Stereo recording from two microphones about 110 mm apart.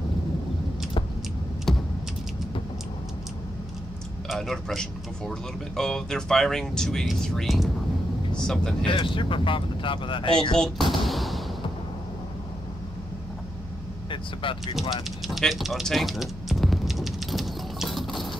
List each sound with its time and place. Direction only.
1.7 s typing: centre (ahead or behind)
4.3 s speech: centre (ahead or behind)
8.8 s speech: 50° left (ahead or behind)
10.6 s speech: centre (ahead or behind)
14.1 s speech: 50° left (ahead or behind)
14.8 s typing: centre (ahead or behind)